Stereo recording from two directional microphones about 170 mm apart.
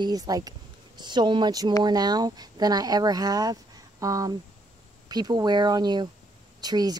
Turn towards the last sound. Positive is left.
turn(degrees=-25)  # may be behind; listen again after turning